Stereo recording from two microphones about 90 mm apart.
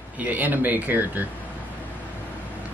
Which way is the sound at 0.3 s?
20° right (ahead or behind).